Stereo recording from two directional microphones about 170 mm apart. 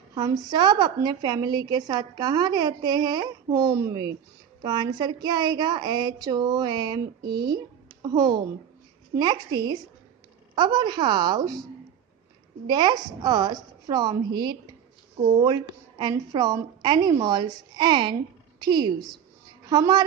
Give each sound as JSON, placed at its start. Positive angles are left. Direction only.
{"t": 0.1, "sound": "a woman's voice", "side_deg": -25}
{"t": 12.6, "sound": "a woman's voice", "side_deg": -25}